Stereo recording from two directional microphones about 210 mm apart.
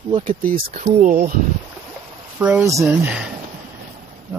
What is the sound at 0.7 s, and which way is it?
Speech, 35° right (ahead or behind).